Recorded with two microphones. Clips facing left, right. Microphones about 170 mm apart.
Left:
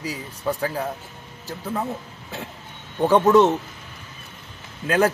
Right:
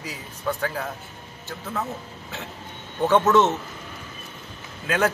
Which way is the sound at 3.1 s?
30° left (ahead or behind).